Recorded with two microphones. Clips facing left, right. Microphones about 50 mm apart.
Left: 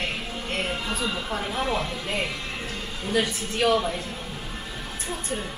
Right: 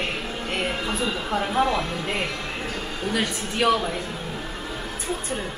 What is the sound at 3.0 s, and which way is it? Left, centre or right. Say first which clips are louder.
Speech: left 1 dB; right.